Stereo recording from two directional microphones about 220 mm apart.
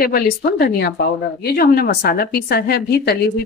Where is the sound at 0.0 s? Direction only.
45° left (ahead or behind).